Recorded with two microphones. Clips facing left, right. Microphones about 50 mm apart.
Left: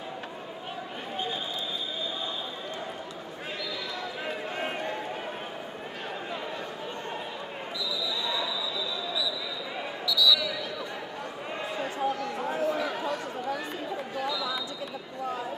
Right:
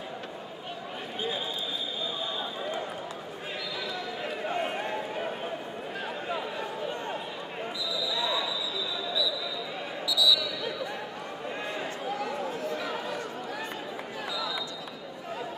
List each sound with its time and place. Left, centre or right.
4.3 s run: centre
10.0 s basketball bounce: centre
11.8 s a sound: centre
12.5 s chatter: centre